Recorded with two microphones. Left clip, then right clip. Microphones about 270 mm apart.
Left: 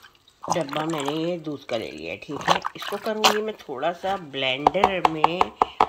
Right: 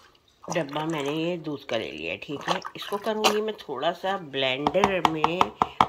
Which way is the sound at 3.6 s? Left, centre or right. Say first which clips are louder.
Left 1 dB; centre.